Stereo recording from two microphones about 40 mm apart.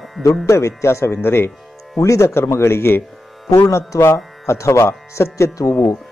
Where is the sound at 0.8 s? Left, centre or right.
Left.